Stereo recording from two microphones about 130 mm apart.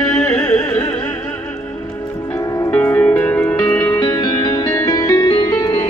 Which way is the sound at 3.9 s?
30° left (ahead or behind).